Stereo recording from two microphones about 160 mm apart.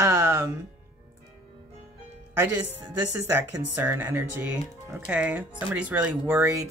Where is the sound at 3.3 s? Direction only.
10° right (ahead or behind).